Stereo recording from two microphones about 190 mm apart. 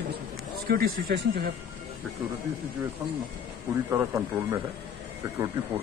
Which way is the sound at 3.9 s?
15° right (ahead or behind).